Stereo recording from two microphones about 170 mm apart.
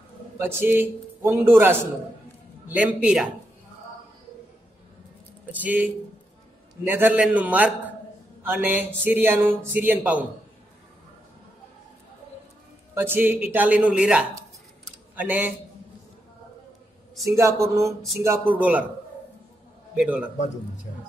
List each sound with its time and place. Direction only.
0.4 s speech: 15° right (ahead or behind)
5.5 s speech: 10° right (ahead or behind)
12.9 s speech: 10° right (ahead or behind)
17.2 s speech: 15° right (ahead or behind)
20.0 s speech: 5° right (ahead or behind)